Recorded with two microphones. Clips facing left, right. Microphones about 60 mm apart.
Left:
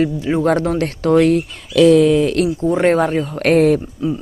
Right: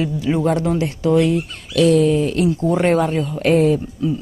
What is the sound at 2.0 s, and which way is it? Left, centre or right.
Speech, left.